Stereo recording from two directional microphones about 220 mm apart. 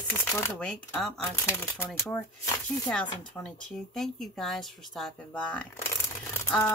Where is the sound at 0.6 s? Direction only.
Centre (ahead or behind).